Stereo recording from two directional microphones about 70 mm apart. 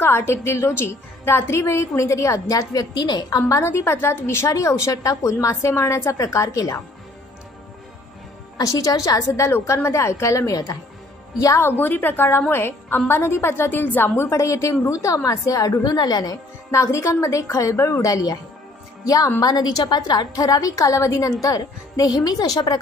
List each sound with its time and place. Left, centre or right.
0.0 s a woman's voice: left
3.5 s a woman's voice: left
4.5 s a woman's voice: left
8.5 s a woman's voice: left
9.5 s a woman's voice: left
11.6 s a woman's voice: left
15.8 s a woman's voice: left
16.7 s a woman's voice: left
19.4 s a woman's voice: left